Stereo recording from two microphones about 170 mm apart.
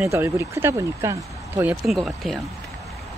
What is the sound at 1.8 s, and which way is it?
Speech, centre (ahead or behind).